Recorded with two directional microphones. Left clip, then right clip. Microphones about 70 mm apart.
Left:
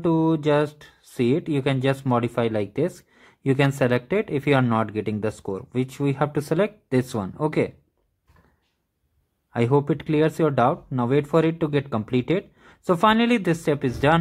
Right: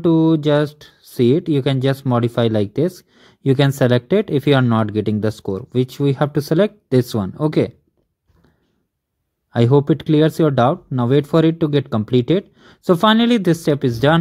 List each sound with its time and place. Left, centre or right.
0.0 s speech: right
2.4 s speech: right
2.7 s speech: right
5.5 s speech: right
9.5 s speech: right
13.1 s speech: right
13.4 s speech: right